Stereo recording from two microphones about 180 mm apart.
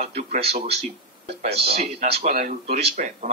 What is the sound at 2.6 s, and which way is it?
Speech, 40° right (ahead or behind).